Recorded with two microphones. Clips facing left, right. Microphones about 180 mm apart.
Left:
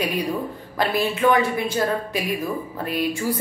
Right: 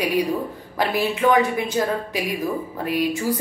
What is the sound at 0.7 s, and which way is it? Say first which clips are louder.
A woman's voice: even; 15° right (ahead or behind).